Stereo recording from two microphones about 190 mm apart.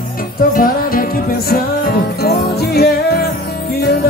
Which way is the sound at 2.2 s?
55° left (ahead or behind).